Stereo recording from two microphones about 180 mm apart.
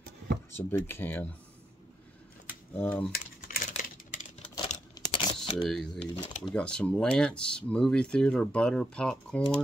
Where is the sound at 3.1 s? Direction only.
50° left (ahead or behind).